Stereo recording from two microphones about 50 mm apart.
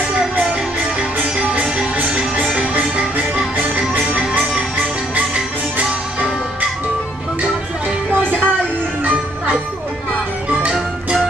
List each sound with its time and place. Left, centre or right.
0.1 s music: centre
2.0 s music: right
8.1 s music: right